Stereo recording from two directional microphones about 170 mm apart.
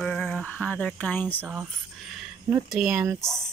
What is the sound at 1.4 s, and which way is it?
Speech, centre (ahead or behind).